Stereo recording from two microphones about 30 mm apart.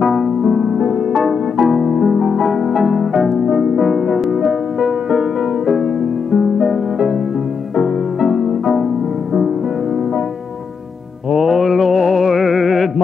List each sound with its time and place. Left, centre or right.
0.0 s music: centre
3.4 s music: centre
3.8 s music: centre
6.3 s music: centre
7.7 s music: centre
11.3 s music: centre